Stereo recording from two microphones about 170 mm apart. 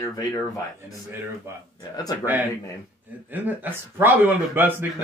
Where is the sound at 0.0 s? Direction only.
20° left (ahead or behind).